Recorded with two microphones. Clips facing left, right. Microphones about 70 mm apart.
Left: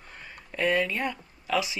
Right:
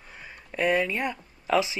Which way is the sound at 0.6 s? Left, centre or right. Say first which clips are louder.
Right 1 dB; right.